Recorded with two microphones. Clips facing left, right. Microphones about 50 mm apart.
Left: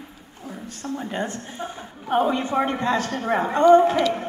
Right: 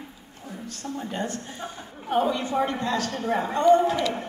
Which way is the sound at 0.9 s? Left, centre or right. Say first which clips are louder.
Left 3 dB; left.